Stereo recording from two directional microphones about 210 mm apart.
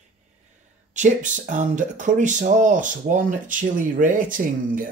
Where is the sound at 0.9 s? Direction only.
35° right (ahead or behind).